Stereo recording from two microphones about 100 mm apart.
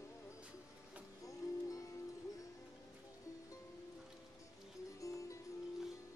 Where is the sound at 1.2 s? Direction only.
35° left (ahead or behind).